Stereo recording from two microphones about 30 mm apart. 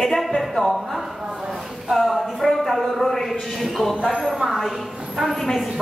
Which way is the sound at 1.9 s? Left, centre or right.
Centre.